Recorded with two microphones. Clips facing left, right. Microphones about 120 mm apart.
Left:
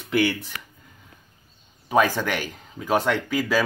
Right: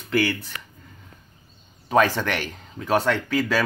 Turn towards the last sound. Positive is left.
turn(degrees=10)  # may be behind; listen again after turning